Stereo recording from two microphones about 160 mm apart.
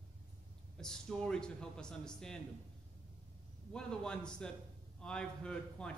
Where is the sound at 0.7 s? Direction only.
5° left (ahead or behind).